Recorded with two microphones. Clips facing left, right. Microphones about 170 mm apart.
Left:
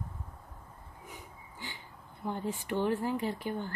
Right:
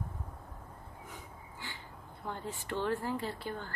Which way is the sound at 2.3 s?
15° left (ahead or behind).